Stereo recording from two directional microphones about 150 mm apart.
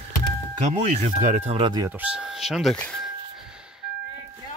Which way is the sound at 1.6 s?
30° right (ahead or behind).